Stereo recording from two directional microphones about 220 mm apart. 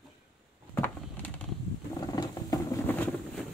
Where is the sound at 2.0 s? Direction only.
15° left (ahead or behind).